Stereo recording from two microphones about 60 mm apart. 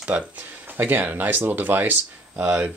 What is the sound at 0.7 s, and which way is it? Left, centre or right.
Speech, right.